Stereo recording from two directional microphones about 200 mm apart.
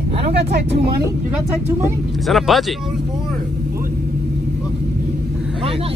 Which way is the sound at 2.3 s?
Centre (ahead or behind).